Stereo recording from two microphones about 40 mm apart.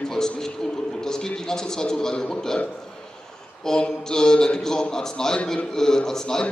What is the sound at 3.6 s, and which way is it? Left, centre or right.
A man's voice, centre.